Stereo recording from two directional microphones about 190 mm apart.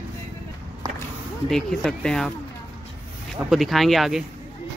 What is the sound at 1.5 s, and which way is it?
Speech, centre (ahead or behind).